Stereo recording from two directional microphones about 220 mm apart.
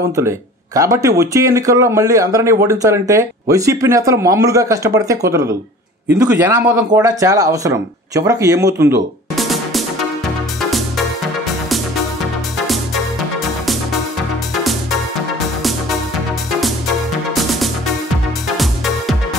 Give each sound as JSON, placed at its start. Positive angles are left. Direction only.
{"t": 0.7, "sound": "speech", "side_deg": -15}
{"t": 9.3, "sound": "music", "side_deg": 0}
{"t": 17.3, "sound": "music", "side_deg": 0}